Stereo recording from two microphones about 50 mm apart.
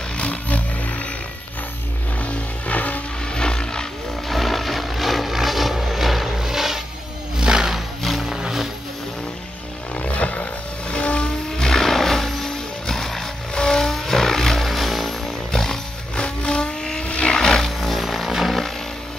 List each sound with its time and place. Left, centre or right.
0.2 s a sound: left
2.2 s vehicle: left
3.3 s roaring cats: centre
4.3 s vehicle: centre
7.3 s music: centre
8.0 s music: centre
9.9 s vehicle: left
11.5 s music: centre
13.6 s vehicle: centre
17.1 s a sound: centre